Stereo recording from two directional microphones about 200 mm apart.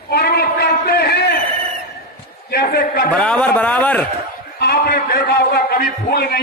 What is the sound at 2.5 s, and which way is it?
Speech, 50° left (ahead or behind).